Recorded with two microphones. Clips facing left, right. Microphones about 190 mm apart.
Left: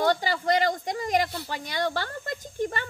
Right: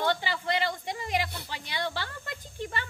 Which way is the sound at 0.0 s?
40° left (ahead or behind).